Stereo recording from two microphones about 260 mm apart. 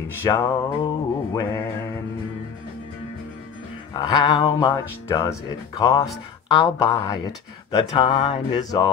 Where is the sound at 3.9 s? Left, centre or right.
Centre.